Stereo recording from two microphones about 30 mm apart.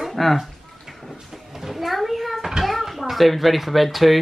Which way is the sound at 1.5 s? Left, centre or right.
Centre.